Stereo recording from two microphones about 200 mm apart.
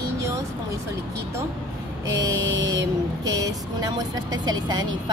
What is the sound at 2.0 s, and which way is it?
Speech, 15° right (ahead or behind).